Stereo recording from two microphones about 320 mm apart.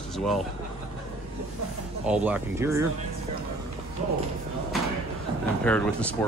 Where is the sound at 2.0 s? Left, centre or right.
Centre.